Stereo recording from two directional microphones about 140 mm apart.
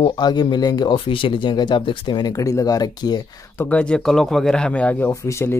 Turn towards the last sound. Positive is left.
turn(degrees=20)  # may be behind; listen again after turning